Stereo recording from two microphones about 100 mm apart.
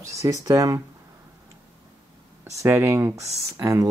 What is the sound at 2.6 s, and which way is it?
Speech, 25° right (ahead or behind).